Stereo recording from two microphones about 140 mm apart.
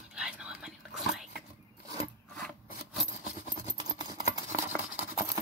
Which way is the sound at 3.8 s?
30° right (ahead or behind).